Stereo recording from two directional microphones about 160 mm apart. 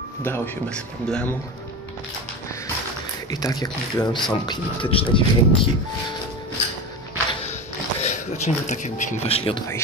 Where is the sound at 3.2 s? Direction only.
25° left (ahead or behind).